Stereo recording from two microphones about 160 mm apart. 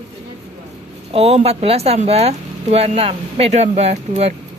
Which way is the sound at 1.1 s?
40° right (ahead or behind).